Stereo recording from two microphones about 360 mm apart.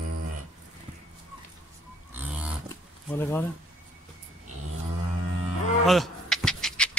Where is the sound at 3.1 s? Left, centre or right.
Centre.